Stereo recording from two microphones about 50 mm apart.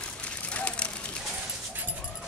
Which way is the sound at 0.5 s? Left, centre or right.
Left.